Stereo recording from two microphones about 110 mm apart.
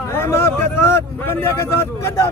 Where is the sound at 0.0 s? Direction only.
25° left (ahead or behind).